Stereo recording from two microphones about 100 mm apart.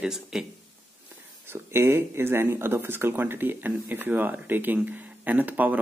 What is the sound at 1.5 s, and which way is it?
Speech, 25° right (ahead or behind).